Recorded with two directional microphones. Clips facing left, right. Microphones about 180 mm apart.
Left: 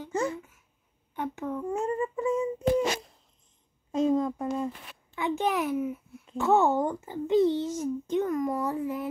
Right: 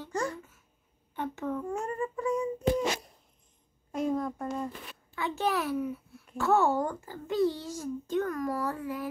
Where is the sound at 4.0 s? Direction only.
20° left (ahead or behind).